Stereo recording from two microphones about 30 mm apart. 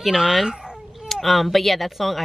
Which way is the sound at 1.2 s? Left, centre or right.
Centre.